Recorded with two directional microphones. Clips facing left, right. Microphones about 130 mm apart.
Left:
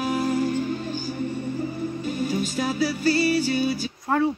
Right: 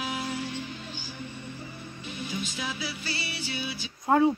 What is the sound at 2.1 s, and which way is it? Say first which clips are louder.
Music: left 7 dB; 45° left (ahead or behind).